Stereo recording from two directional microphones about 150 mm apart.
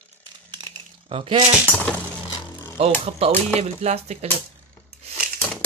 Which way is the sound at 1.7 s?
10° left (ahead or behind).